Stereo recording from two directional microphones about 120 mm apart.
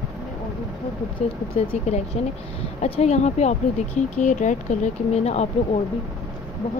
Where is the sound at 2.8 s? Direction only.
65° left (ahead or behind).